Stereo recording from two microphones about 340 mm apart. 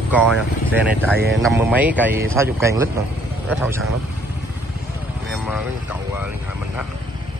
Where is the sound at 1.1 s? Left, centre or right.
Right.